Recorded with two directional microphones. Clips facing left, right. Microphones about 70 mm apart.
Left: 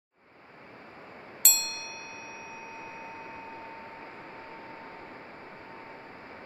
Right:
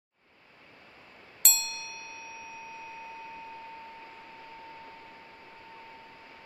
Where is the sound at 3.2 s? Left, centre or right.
Left.